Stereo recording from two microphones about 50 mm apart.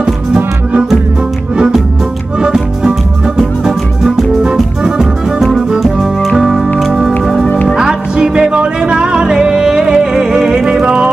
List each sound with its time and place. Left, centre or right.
0.0 s music: centre
2.4 s music: centre
4.4 s music: centre